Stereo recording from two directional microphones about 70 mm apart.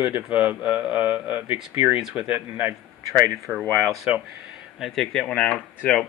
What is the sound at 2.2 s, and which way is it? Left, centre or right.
Speech, right.